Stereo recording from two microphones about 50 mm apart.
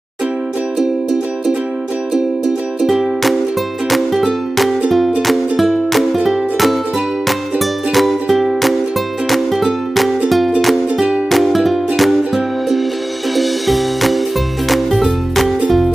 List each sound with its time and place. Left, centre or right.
2.8 s music: centre
11.2 s music: centre
13.4 s music: centre